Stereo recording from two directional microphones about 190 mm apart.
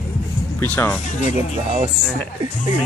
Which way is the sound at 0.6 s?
10° left (ahead or behind).